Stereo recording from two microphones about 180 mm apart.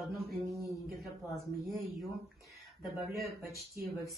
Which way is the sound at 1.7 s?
Centre (ahead or behind).